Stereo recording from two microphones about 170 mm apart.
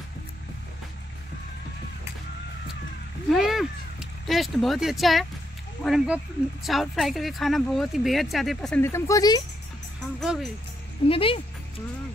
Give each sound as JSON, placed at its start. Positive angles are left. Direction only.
{"t": 3.3, "sound": "a sound", "side_deg": 0}
{"t": 5.9, "sound": "a woman's voice", "side_deg": -5}
{"t": 8.8, "sound": "speech", "side_deg": 15}
{"t": 10.2, "sound": "a woman's voice", "side_deg": 0}
{"t": 11.1, "sound": "speech", "side_deg": 30}